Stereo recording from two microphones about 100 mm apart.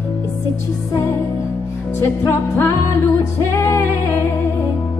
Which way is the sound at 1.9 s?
25° left (ahead or behind).